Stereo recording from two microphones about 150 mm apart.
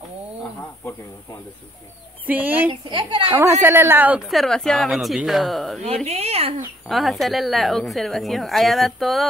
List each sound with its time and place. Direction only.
2.2 s speech: 10° right (ahead or behind)
2.9 s a woman's voice: 35° right (ahead or behind)
3.6 s speech: 15° right (ahead or behind)
4.3 s a woman's voice: centre (ahead or behind)
6.0 s speech: 45° right (ahead or behind)
6.9 s a woman's voice: centre (ahead or behind)